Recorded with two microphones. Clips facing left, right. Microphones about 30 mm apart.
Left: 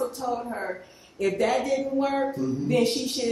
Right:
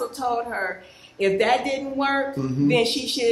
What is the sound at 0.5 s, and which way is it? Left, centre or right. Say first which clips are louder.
A woman's voice: right 4 dB; right.